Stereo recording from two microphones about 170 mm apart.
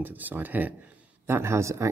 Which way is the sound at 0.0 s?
10° right (ahead or behind).